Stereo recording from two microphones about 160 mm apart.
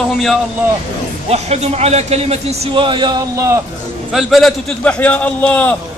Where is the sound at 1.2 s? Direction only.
40° right (ahead or behind).